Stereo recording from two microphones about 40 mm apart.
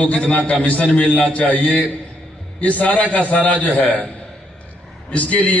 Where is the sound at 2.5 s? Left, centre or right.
Left.